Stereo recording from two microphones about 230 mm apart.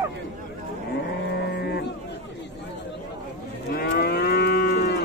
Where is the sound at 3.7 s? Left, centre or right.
Left.